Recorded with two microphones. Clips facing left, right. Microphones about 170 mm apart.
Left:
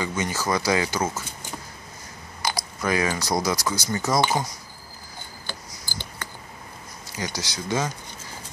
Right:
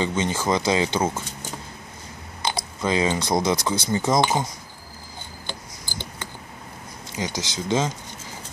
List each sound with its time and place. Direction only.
0.0 s speech: 25° right (ahead or behind)
2.4 s speech: 25° right (ahead or behind)
5.5 s a sound: 20° right (ahead or behind)
7.1 s speech: 20° right (ahead or behind)